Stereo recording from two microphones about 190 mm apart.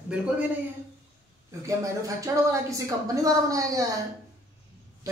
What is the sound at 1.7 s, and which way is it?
Speech, 15° right (ahead or behind).